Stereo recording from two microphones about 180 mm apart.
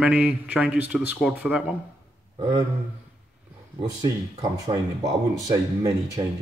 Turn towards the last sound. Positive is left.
turn(degrees=-20)  # may be behind; listen again after turning